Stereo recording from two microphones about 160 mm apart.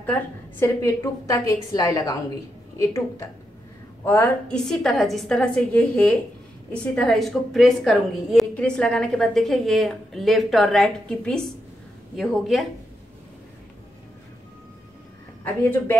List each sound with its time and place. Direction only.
0.0 s a woman's voice: 10° left (ahead or behind)